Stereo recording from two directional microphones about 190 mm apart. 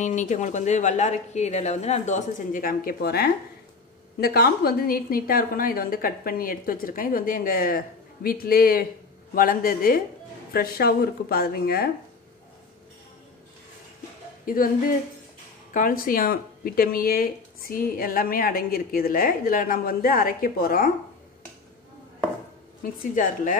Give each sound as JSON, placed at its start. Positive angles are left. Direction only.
{"t": 0.0, "sound": "speech", "side_deg": 40}
{"t": 14.4, "sound": "a sound", "side_deg": 50}
{"t": 15.7, "sound": "speech", "side_deg": 50}